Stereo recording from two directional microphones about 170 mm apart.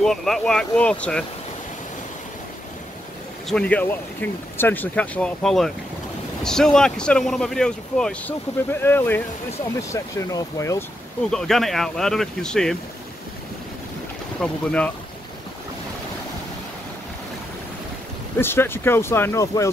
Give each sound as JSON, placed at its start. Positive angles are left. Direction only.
{"t": 0.0, "sound": "speech", "side_deg": 0}
{"t": 3.4, "sound": "speech", "side_deg": 5}
{"t": 11.2, "sound": "speech", "side_deg": 5}
{"t": 14.4, "sound": "speech", "side_deg": 5}
{"t": 18.4, "sound": "speech", "side_deg": 15}